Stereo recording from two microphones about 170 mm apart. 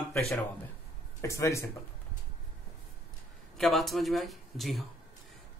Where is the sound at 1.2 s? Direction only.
15° left (ahead or behind).